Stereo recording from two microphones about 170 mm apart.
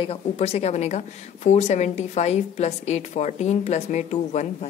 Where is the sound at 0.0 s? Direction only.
35° left (ahead or behind).